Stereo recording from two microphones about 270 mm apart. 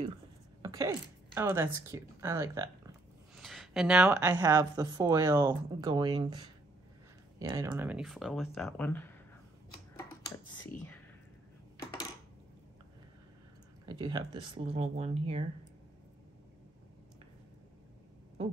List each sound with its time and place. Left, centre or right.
0.6 s speech: centre
3.3 s speech: centre
13.8 s speech: centre